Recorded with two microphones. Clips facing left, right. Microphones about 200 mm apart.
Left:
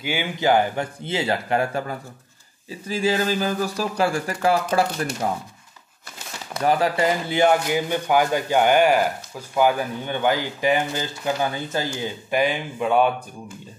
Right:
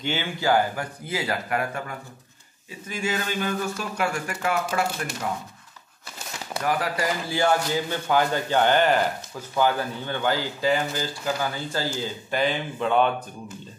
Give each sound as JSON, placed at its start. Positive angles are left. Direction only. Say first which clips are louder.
{"t": 0.0, "sound": "speech", "louder": "left 3 dB", "side_deg": 10}
{"t": 6.6, "sound": "speech", "louder": "left 6 dB", "side_deg": 30}